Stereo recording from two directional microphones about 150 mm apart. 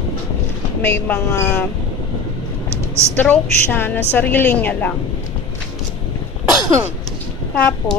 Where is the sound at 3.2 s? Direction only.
10° left (ahead or behind).